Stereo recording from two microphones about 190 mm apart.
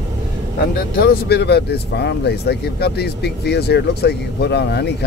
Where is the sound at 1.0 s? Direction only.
55° left (ahead or behind).